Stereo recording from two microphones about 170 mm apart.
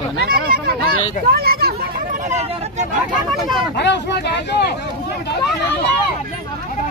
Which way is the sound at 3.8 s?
90° left.